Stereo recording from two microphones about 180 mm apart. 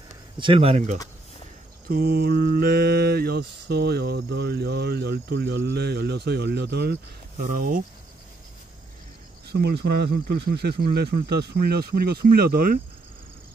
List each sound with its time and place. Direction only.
0.4 s speech: 30° right (ahead or behind)
1.9 s mantra: 60° right (ahead or behind)
7.4 s speech: 50° right (ahead or behind)
9.5 s mantra: 65° right (ahead or behind)